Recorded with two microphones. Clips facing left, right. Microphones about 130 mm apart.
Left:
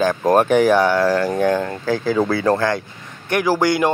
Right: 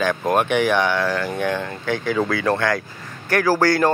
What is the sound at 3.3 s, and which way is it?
Speech, 15° left (ahead or behind).